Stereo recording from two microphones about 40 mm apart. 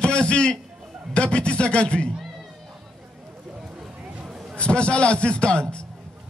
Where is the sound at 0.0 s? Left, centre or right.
Left.